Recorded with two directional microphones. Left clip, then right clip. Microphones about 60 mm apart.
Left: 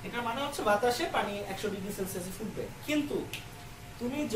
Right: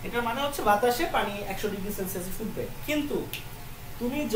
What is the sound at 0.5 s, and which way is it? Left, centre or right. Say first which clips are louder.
Speech: right 4 dB; right.